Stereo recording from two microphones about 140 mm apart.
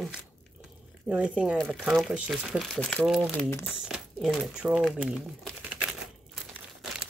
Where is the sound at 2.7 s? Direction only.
10° left (ahead or behind).